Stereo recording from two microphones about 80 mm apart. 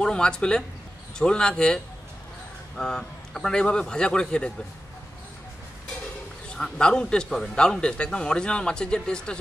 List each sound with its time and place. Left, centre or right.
0.0 s a man's voice: centre
6.5 s a man's voice: centre